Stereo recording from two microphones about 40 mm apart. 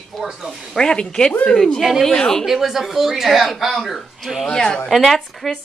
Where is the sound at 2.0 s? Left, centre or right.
Centre.